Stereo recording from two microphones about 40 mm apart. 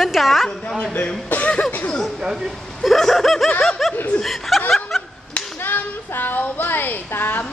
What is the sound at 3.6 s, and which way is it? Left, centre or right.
Laughter, centre.